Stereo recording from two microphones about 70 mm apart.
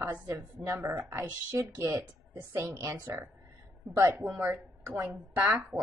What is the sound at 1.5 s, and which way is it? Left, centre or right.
A woman's voice, right.